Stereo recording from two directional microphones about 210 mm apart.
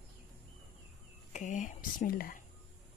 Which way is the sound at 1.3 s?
35° left (ahead or behind).